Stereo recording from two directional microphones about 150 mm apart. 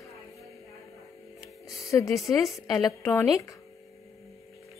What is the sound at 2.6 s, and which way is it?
Speech, 20° left (ahead or behind).